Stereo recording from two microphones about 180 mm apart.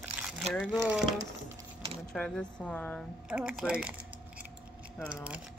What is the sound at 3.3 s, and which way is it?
Speech, 5° right (ahead or behind).